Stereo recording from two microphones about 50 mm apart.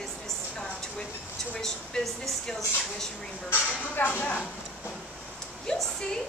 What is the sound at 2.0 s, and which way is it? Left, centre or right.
Speech, centre.